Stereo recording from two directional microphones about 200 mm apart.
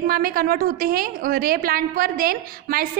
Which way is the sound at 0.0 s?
45° right (ahead or behind).